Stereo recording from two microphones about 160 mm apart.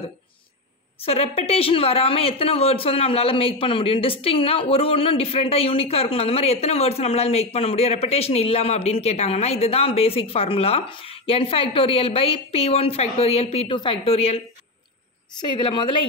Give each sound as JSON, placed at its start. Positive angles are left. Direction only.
{"t": 1.0, "sound": "a woman's voice", "side_deg": 40}
{"t": 15.4, "sound": "a woman's voice", "side_deg": 30}